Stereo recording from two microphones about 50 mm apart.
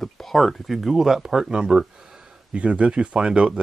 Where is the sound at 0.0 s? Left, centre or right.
Centre.